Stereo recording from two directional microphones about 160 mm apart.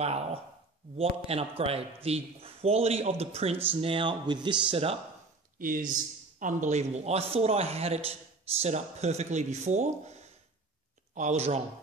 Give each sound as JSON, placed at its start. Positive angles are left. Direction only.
{"t": 0.0, "sound": "a man's voice", "side_deg": -40}
{"t": 5.6, "sound": "speech", "side_deg": -60}
{"t": 6.4, "sound": "a man's voice", "side_deg": -50}
{"t": 11.1, "sound": "speech", "side_deg": -45}